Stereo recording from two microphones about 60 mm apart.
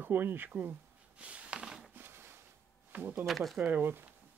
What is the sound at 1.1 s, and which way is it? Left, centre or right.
Snort, centre.